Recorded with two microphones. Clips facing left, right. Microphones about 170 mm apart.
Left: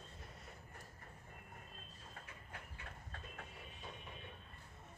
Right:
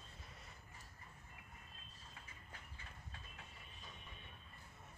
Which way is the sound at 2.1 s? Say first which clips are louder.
Left 6 dB; 60° left (ahead or behind).